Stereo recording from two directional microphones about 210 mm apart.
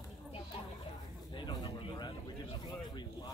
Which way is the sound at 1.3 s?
20° left (ahead or behind).